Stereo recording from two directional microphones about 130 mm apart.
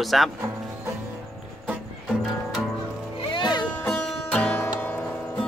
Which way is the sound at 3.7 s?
15° left (ahead or behind).